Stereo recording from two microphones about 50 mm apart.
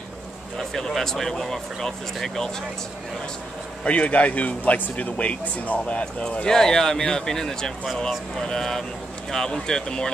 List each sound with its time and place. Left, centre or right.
0.6 s speech: centre
3.8 s speech: left
6.4 s speech: centre